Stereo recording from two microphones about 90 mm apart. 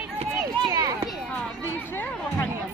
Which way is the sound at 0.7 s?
35° right (ahead or behind).